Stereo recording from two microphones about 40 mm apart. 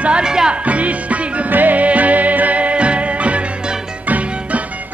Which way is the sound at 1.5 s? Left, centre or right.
Right.